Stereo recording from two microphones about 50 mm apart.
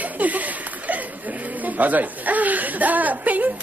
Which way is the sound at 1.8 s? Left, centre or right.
Right.